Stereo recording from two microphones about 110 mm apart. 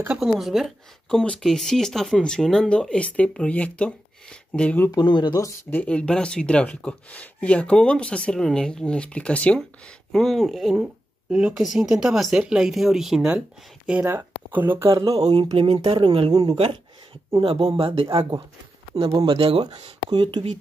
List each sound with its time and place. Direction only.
0.2 s speech: 5° right (ahead or behind); by 4.9 s 15° left (ahead or behind)
4.9 s speech: 45° left (ahead or behind)
5.7 s speech: 15° left (ahead or behind); by 13.4 s 5° right (ahead or behind)
14.0 s speech: 20° right (ahead or behind)
14.9 s speech: 35° right (ahead or behind)
15.5 s speech: 60° right (ahead or behind)